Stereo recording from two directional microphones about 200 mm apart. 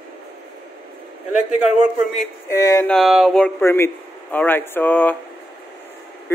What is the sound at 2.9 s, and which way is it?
Speech, centre (ahead or behind).